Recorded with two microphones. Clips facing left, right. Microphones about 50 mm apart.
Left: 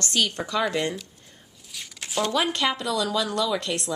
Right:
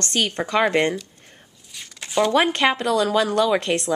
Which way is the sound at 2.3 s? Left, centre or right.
Right.